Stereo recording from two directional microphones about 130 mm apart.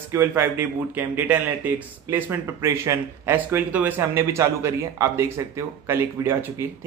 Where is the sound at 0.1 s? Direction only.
15° right (ahead or behind).